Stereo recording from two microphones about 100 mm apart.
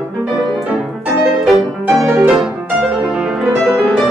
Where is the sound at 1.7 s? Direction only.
25° right (ahead or behind).